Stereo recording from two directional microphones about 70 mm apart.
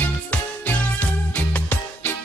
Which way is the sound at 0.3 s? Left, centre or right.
Centre.